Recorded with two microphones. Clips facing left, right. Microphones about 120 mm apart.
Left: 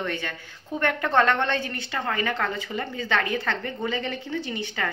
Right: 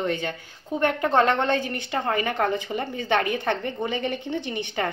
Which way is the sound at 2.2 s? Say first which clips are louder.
Right 3 dB; 50° right (ahead or behind).